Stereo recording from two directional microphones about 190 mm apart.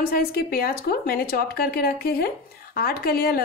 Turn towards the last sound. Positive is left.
turn(degrees=50)  # may be behind; listen again after turning